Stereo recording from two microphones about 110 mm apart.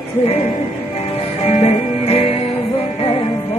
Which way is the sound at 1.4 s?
65° left (ahead or behind).